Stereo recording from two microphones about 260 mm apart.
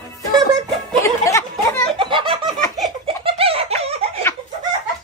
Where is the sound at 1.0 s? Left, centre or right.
Centre.